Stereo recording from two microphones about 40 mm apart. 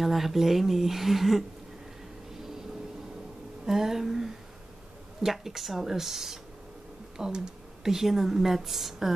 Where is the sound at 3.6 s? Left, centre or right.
Centre.